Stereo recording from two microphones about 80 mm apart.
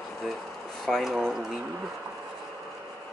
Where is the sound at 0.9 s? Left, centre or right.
Centre.